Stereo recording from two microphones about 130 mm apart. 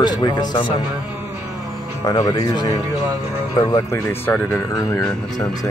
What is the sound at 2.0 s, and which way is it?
Speech, 30° left (ahead or behind).